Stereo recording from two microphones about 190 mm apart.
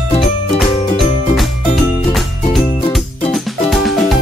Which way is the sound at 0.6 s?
Centre (ahead or behind).